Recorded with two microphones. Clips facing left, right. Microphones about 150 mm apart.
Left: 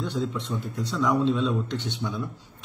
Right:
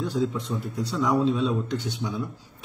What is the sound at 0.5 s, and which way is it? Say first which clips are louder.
Speech: right 1 dB; 15° right (ahead or behind).